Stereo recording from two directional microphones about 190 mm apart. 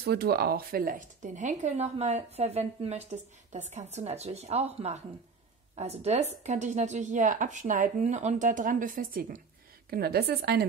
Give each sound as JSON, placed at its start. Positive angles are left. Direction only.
{"t": 0.0, "sound": "a woman's voice", "side_deg": -55}